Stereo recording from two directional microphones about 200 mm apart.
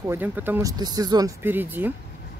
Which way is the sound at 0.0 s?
10° right (ahead or behind).